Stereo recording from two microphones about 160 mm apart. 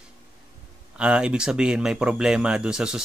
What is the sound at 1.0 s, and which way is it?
Speech, 5° right (ahead or behind).